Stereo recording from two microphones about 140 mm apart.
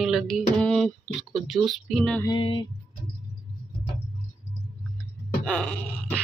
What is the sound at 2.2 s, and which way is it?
Music, 35° left (ahead or behind).